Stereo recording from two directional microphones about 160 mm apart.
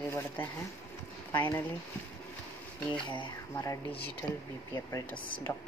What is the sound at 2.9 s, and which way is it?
Speech, 30° left (ahead or behind).